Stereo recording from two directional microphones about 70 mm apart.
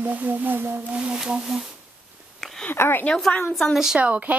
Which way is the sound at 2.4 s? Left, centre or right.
Centre.